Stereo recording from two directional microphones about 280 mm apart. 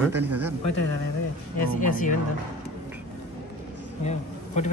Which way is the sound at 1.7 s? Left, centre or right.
Left.